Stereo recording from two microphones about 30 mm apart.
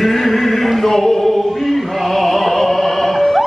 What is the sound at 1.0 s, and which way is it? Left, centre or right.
Music, centre.